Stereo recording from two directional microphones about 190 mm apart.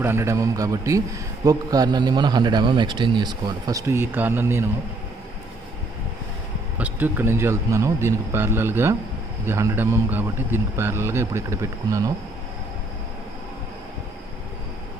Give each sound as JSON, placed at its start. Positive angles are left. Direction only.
{"t": 0.0, "sound": "a man's voice", "side_deg": -15}
{"t": 6.8, "sound": "a man's voice", "side_deg": -10}